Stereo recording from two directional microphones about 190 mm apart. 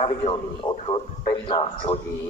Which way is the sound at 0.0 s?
30° left (ahead or behind).